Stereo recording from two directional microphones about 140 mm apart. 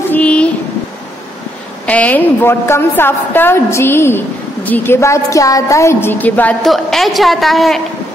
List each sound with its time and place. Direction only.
0.1 s a sound: 10° left (ahead or behind)
1.9 s a woman's voice: 10° left (ahead or behind)
6.7 s a woman's voice: centre (ahead or behind)